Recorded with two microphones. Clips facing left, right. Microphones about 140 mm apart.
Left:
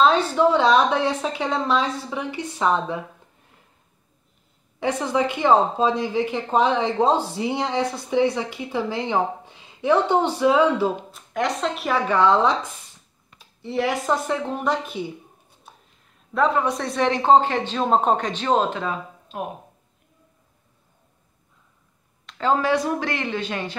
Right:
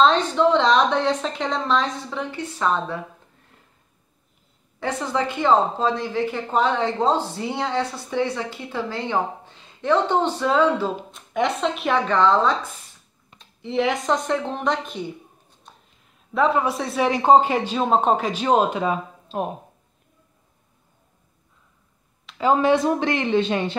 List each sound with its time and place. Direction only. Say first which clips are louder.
0.0 s speech: even; 10° left (ahead or behind)
4.7 s speech: left 2 dB; 15° left (ahead or behind)
13.7 s a woman's voice: right 1 dB; 5° left (ahead or behind)
16.3 s speech: right 1 dB; 5° right (ahead or behind)
19.2 s a sound: right 4 dB; 30° right (ahead or behind)
22.2 s a sound: right 2 dB; 10° right (ahead or behind)
22.6 s speech: right 3 dB; 25° right (ahead or behind)